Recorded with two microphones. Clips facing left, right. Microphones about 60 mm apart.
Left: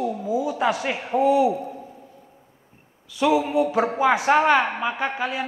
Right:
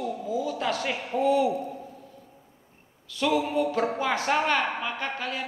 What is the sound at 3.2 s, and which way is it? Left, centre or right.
A woman's voice, centre.